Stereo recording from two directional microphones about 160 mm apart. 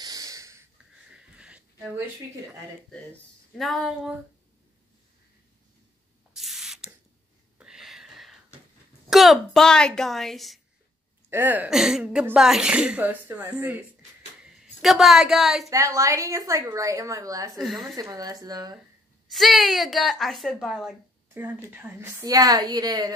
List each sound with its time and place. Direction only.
0.0 s wheeze: 20° right (ahead or behind)
1.1 s a sound: 5° right (ahead or behind)
3.5 s a woman's voice: centre (ahead or behind)
6.3 s spray: centre (ahead or behind)
7.5 s a sound: 5° right (ahead or behind)
9.1 s a woman's voice: centre (ahead or behind)
11.2 s a woman's voice: 10° right (ahead or behind)
15.7 s a woman's voice: 20° right (ahead or behind)
17.6 s a woman's voice: centre (ahead or behind)
17.9 s a woman's voice: 25° right (ahead or behind)
19.2 s a woman's voice: centre (ahead or behind)
21.3 s a woman's voice: 15° right (ahead or behind)
22.2 s a woman's voice: 25° right (ahead or behind)